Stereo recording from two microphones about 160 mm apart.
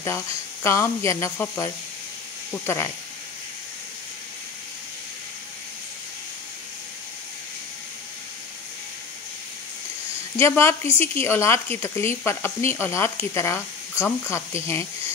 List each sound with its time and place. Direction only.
0.7 s speech: 20° left (ahead or behind)
10.3 s speech: 15° left (ahead or behind)